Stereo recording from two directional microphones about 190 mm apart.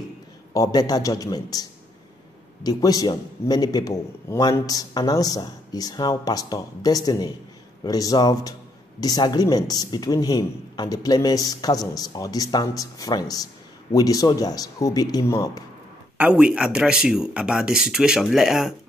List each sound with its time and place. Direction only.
0.6 s a man's voice: 20° left (ahead or behind)
16.2 s speech: 5° right (ahead or behind)